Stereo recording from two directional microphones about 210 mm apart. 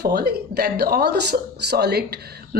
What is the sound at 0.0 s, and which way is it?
Speech, 50° right (ahead or behind).